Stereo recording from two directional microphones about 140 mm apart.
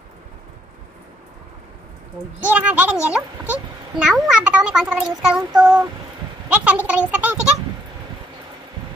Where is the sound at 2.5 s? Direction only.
10° right (ahead or behind).